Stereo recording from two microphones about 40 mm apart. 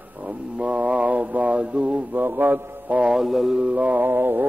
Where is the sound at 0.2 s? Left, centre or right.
Right.